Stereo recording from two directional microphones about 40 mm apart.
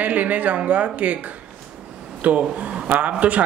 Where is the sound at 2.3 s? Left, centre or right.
Right.